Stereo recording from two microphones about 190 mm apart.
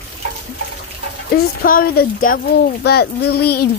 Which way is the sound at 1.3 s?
50° left (ahead or behind).